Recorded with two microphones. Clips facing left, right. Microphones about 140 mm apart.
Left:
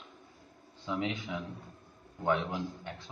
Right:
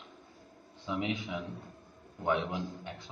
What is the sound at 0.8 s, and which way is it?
A man's voice, 20° right (ahead or behind).